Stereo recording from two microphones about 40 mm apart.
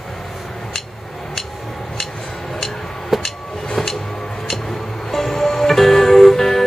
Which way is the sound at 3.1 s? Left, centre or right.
Centre.